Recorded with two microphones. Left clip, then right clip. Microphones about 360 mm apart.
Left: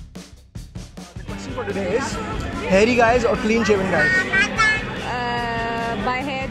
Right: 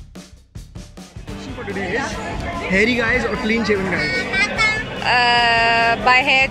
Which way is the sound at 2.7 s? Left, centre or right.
Centre.